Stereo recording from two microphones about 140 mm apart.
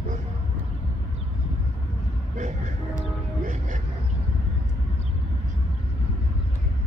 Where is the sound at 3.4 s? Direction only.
65° right (ahead or behind).